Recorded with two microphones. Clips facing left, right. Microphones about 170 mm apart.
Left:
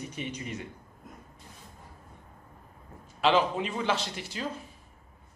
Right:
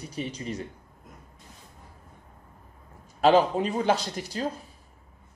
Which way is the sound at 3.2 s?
40° right (ahead or behind).